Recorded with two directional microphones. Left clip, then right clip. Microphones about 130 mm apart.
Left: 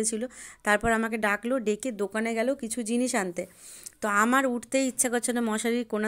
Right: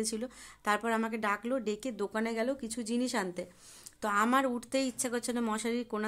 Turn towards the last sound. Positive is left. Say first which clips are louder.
# left 6 dB
turn(degrees=35)  # may be behind; listen again after turning